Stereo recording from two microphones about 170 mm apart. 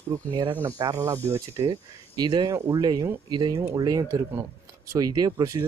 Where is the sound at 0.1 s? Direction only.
25° right (ahead or behind).